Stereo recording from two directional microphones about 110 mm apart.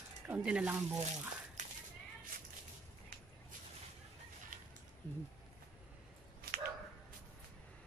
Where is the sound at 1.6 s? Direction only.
90° right.